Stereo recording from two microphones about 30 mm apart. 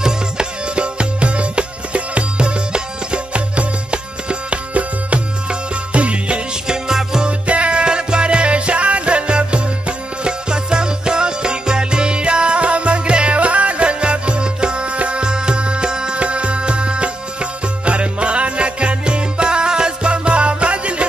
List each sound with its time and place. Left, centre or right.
0.0 s music: right
6.7 s music: centre
7.2 s music: right
16.2 s music: right